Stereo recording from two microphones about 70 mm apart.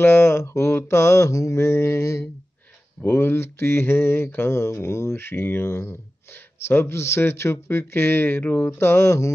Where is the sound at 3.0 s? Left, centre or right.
Left.